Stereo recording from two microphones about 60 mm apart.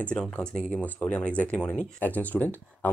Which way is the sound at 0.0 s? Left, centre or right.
Left.